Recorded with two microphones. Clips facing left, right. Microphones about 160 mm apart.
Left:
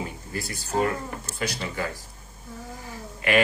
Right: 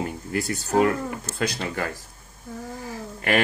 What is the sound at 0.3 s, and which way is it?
Speech, 70° right (ahead or behind).